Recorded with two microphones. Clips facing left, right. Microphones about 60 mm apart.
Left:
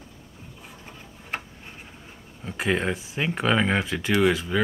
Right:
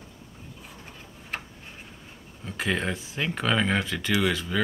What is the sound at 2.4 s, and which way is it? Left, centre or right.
Speech, centre.